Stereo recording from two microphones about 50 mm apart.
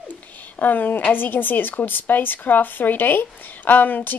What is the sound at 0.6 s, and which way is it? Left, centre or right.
A woman's voice, left.